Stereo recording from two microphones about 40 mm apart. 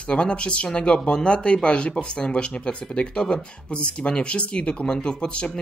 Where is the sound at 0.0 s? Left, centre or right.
Left.